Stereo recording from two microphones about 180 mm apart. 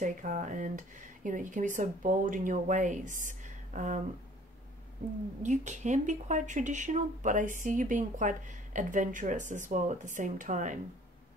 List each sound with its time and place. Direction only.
0.0 s speech: 45° right (ahead or behind)
5.4 s speech: 40° right (ahead or behind)